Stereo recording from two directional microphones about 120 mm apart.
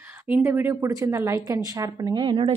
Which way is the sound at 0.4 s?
20° right (ahead or behind).